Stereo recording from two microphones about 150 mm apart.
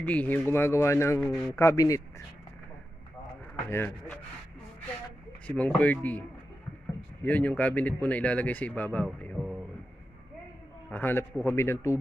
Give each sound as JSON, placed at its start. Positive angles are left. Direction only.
{"t": 0.0, "sound": "speech", "side_deg": 10}
{"t": 3.7, "sound": "speech", "side_deg": 15}
{"t": 5.5, "sound": "speech", "side_deg": 10}
{"t": 7.2, "sound": "speech", "side_deg": 10}
{"t": 10.9, "sound": "speech", "side_deg": 15}